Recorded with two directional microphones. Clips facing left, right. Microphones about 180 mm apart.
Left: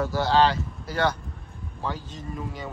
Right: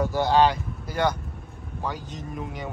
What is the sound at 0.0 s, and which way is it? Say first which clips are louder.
Speech: right 1 dB; 15° right (ahead or behind).